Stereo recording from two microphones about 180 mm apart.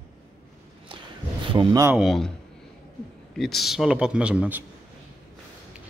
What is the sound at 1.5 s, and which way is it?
Speech, 30° right (ahead or behind).